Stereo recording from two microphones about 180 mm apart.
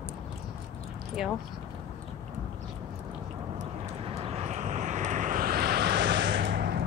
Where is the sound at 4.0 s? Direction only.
35° right (ahead or behind).